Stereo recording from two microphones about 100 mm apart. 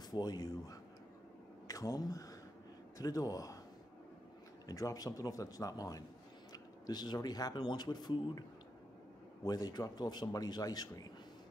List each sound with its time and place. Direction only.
0.1 s speech: 40° left (ahead or behind)
4.6 s speech: 35° left (ahead or behind)